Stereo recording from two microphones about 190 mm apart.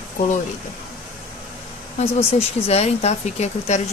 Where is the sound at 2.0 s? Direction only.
30° left (ahead or behind).